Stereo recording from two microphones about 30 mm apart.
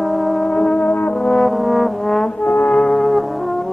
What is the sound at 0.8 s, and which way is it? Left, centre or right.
Brass instrument, left.